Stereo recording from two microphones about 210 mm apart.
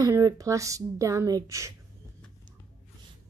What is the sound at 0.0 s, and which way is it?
A woman's voice, 15° right (ahead or behind).